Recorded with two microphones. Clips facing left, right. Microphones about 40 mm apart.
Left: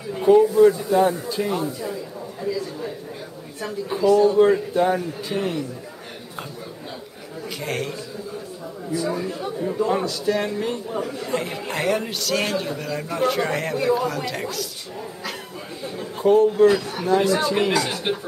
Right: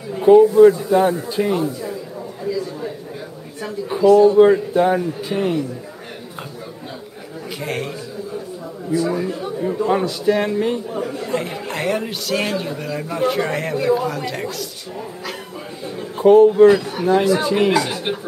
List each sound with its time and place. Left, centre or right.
0.3 s speech: centre
2.4 s a sound: centre
3.6 s speech: centre
7.6 s speech: centre
8.9 s speech: centre